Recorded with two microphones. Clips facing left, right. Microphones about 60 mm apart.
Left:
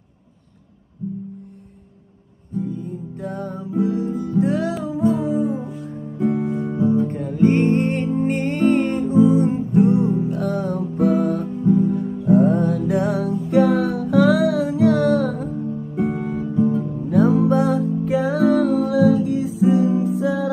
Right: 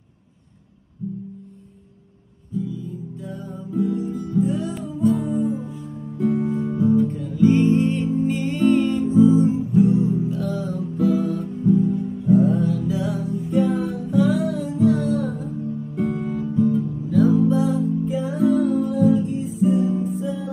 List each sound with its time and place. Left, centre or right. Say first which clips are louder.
2.5 s music: left 2 dB; left
4.1 s music: left 3 dB; left
4.4 s music: left 2 dB; left
6.5 s music: even; left
7.1 s music: even; left
11.6 s music: left 1 dB; left
11.9 s music: left 1 dB; left
15.9 s music: left 2 dB; centre
16.2 s music: left 1 dB; left
16.8 s music: left 1 dB; left